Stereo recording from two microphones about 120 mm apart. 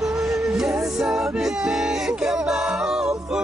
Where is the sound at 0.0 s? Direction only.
5° right (ahead or behind).